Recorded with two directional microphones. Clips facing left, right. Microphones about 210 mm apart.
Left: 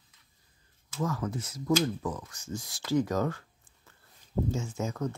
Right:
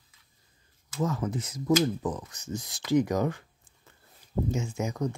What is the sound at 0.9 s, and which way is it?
Speech, 20° right (ahead or behind).